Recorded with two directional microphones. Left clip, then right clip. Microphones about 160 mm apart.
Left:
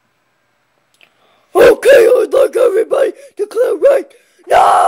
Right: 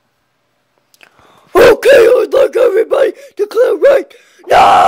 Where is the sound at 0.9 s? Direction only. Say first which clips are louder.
Right 6 dB; 40° right (ahead or behind).